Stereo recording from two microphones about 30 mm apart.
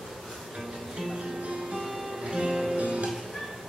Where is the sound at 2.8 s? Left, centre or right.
Right.